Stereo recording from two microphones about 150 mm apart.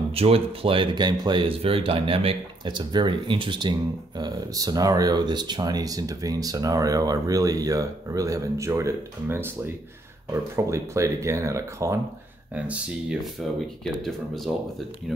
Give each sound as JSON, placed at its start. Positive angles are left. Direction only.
{"t": 0.1, "sound": "speech", "side_deg": -40}
{"t": 10.5, "sound": "speech", "side_deg": -20}
{"t": 12.5, "sound": "speech", "side_deg": -5}